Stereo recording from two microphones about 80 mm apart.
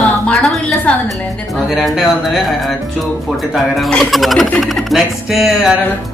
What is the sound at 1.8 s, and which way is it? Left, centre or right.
Speech, centre.